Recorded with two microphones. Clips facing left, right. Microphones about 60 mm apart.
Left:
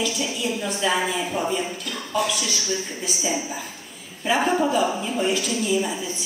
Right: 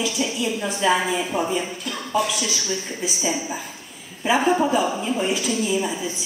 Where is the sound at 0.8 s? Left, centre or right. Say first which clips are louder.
Right 3 dB; centre.